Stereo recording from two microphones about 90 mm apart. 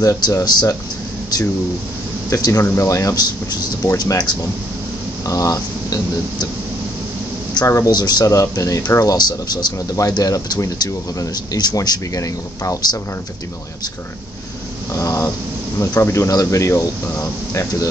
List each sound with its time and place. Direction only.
0.0 s speech: 40° left (ahead or behind)
2.2 s speech: 40° left (ahead or behind)
7.6 s speech: 35° left (ahead or behind)
7.9 s speech: 50° left (ahead or behind)
14.9 s speech: 35° left (ahead or behind)